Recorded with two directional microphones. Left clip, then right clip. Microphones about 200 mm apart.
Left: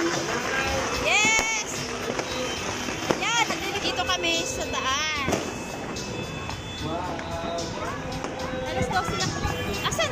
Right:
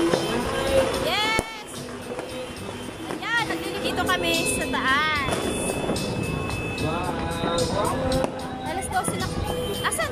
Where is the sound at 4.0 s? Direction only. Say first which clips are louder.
Right 4 dB; centre (ahead or behind).